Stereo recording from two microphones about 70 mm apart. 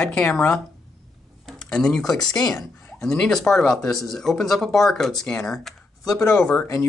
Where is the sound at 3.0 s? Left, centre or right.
Centre.